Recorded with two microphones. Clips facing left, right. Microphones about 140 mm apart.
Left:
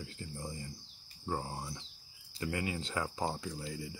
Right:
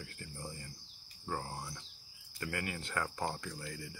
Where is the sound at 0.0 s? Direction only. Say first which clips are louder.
Left 3 dB; 15° left (ahead or behind).